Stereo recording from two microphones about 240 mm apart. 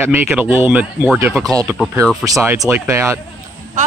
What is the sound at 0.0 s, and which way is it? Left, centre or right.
Speech, centre.